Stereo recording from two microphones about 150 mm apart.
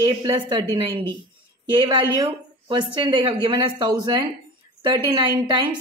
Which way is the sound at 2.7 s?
30° right (ahead or behind).